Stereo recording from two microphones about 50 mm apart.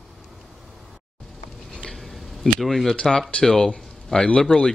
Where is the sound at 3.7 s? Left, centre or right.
Centre.